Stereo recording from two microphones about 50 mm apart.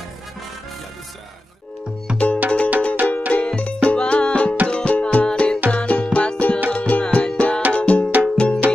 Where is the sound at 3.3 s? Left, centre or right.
Left.